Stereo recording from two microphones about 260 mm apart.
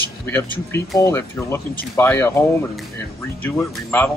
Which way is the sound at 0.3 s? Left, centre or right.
Centre.